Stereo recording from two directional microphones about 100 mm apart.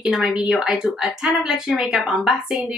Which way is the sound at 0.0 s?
5° right (ahead or behind).